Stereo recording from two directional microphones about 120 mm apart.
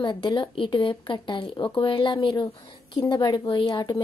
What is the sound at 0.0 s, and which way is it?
Speech, 40° left (ahead or behind).